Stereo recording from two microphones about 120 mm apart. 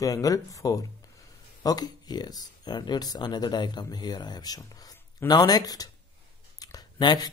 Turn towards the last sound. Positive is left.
turn(degrees=35)  # may be behind; listen again after turning